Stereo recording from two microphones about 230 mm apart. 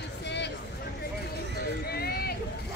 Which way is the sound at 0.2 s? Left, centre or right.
Left.